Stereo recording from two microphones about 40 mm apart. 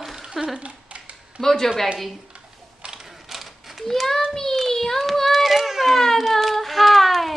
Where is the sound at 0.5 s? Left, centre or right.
Right.